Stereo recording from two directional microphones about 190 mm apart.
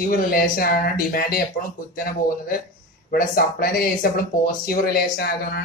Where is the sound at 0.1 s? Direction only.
50° left (ahead or behind).